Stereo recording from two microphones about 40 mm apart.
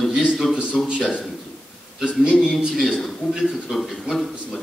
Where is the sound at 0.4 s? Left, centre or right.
Centre.